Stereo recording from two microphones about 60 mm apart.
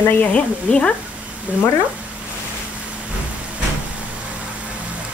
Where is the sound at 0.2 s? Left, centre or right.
Left.